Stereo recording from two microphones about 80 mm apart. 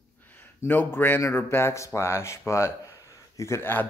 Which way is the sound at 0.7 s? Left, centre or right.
Left.